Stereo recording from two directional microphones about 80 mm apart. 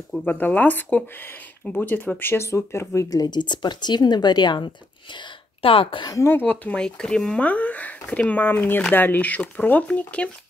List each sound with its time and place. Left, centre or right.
0.3 s speech: left
3.2 s speech: left
6.2 s speech: left